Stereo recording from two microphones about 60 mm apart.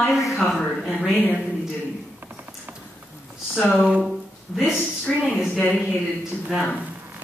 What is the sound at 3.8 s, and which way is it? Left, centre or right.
Speech, centre.